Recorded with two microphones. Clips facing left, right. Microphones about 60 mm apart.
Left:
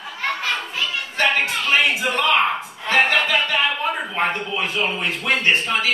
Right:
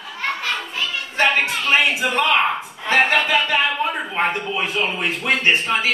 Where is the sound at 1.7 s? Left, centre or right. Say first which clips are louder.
Right 1 dB; right.